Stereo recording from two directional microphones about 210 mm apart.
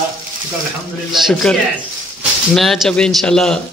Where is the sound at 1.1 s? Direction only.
Centre (ahead or behind).